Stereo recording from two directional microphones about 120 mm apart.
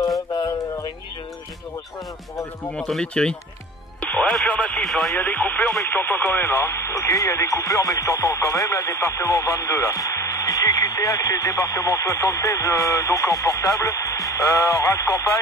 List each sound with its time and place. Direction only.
0.3 s music: 30° left (ahead or behind)
2.7 s speech: 5° left (ahead or behind)
4.0 s radio: 10° left (ahead or behind)
4.5 s speech: 10° left (ahead or behind)
5.1 s speech: 15° left (ahead or behind)